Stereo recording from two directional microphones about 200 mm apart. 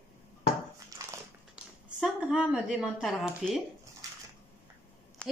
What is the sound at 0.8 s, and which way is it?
Dog, 15° right (ahead or behind).